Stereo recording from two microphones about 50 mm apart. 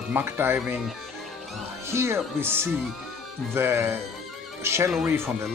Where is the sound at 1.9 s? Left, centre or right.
Right.